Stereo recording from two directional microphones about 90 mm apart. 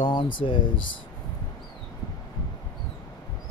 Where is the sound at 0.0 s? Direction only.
70° left (ahead or behind).